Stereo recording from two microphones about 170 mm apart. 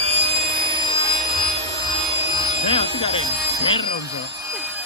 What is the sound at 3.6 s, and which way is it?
Telephone bell ringing, 30° left (ahead or behind).